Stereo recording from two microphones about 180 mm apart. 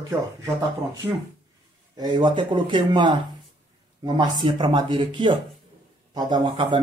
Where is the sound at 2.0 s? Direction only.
25° right (ahead or behind).